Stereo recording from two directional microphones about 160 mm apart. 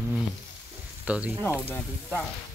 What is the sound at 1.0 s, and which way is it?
Speech, 10° right (ahead or behind).